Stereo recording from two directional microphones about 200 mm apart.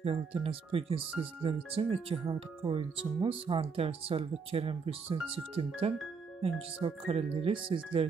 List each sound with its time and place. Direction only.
0.0 s speech: 30° right (ahead or behind)